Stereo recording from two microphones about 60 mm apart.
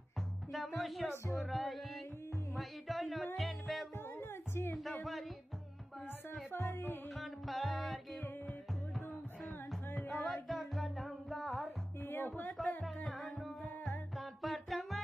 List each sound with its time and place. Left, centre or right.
0.5 s music: centre
1.1 s music: left
1.4 s music: centre
4.2 s music: left
6.5 s music: left
7.2 s music: centre
9.9 s music: centre
12.0 s music: left
12.6 s music: centre
13.8 s music: centre